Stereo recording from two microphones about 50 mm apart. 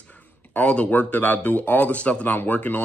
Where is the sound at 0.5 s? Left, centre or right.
Left.